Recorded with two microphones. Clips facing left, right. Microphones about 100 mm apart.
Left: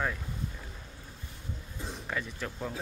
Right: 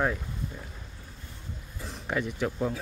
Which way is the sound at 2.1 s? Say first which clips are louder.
Right 8 dB; 10° right (ahead or behind).